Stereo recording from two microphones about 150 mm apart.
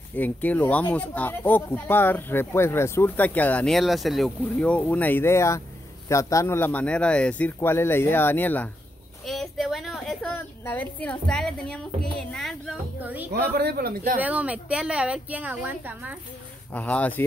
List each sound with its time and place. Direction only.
0.1 s speech: 10° left (ahead or behind)
9.2 s a sound: centre (ahead or behind)
10.2 s a woman's voice: 15° left (ahead or behind)
13.0 s a woman's voice: 10° right (ahead or behind)
13.3 s speech: 90° right
14.1 s a woman's voice: 10° right (ahead or behind)
16.7 s speech: 10° left (ahead or behind)